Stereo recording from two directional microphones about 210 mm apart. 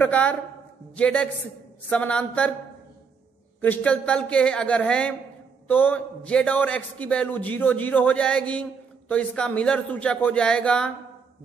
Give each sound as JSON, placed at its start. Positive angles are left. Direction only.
{"t": 0.0, "sound": "a man's voice", "side_deg": 5}
{"t": 3.6, "sound": "a man's voice", "side_deg": 5}